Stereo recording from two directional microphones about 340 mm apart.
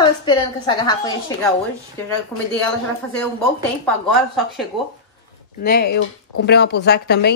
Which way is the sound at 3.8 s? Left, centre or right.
Centre.